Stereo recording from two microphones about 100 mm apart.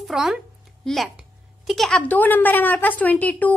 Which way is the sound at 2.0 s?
15° left (ahead or behind).